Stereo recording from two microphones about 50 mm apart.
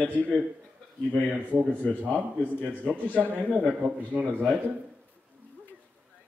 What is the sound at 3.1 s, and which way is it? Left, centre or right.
Speech, right.